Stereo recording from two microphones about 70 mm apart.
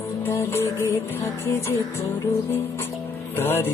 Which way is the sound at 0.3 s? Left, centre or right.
Left.